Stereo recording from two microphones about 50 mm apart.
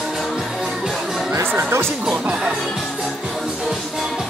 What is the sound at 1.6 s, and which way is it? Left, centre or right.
Speech, right.